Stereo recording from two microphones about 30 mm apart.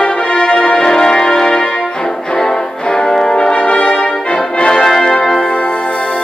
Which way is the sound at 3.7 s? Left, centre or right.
Left.